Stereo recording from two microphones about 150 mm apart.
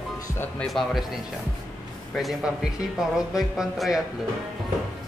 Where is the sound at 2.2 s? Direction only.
Centre (ahead or behind).